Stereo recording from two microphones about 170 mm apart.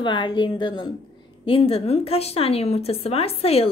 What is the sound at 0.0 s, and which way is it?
A woman's voice, 25° left (ahead or behind).